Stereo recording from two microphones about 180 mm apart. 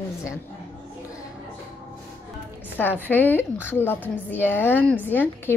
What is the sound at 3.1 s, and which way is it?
A woman's voice, 10° left (ahead or behind).